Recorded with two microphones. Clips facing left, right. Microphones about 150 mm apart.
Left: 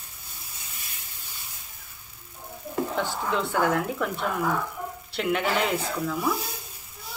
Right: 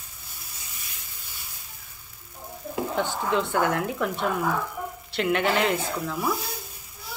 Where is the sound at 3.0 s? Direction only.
Centre (ahead or behind).